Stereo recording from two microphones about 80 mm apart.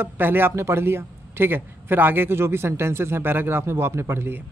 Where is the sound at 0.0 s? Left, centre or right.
Right.